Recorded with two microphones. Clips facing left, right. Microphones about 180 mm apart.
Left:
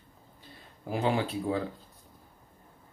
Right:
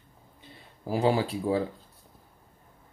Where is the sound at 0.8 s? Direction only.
35° right (ahead or behind).